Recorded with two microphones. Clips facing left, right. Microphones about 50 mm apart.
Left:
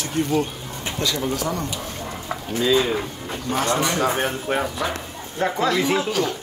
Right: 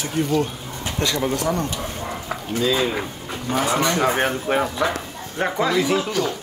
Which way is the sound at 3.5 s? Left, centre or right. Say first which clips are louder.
Right 1 dB; centre.